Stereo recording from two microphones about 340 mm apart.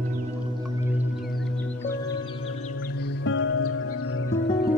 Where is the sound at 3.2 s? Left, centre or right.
Left.